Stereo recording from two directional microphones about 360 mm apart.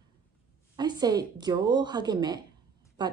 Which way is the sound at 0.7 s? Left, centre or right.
Centre.